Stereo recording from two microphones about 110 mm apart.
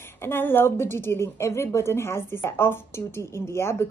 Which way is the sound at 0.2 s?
20° left (ahead or behind).